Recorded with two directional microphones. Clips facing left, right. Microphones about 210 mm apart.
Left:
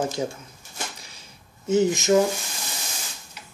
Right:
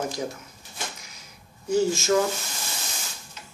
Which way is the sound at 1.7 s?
20° left (ahead or behind).